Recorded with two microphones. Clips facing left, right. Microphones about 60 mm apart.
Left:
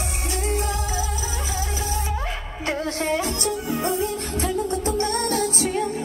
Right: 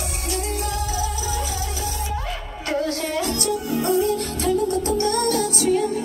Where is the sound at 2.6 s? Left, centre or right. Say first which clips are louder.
Right 1 dB; left.